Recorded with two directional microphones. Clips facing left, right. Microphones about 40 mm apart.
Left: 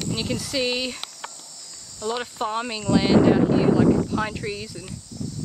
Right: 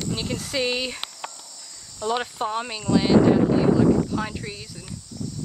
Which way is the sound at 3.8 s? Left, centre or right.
Centre.